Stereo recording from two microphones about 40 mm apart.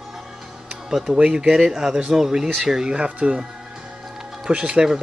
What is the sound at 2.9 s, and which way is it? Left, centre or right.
Speech, right.